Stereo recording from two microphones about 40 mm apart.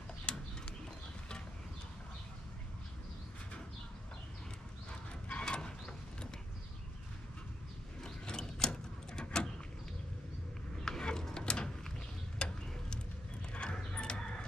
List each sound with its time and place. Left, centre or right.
5.4 s a sound: left
8.0 s mechanisms: centre
10.9 s ratchet: centre
12.4 s tick-tock: left
13.5 s dog: left